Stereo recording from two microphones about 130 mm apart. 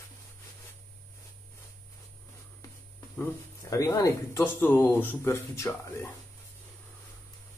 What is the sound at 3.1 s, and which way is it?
Speech, 20° left (ahead or behind).